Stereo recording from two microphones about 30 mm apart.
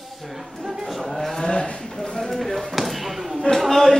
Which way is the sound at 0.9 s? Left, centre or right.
Centre.